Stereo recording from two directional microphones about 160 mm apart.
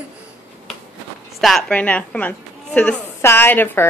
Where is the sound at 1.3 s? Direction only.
Centre (ahead or behind).